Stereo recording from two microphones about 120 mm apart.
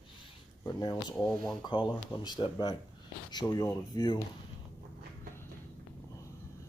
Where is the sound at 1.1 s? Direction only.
5° left (ahead or behind).